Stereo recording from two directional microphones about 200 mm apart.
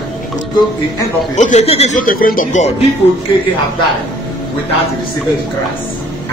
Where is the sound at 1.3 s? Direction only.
35° left (ahead or behind).